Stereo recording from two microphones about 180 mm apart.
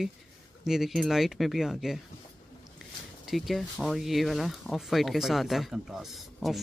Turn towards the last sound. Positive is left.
turn(degrees=0)  # may be behind; listen again after turning